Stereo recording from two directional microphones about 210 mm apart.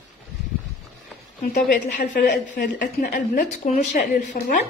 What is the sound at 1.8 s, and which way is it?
Speech, 55° left (ahead or behind).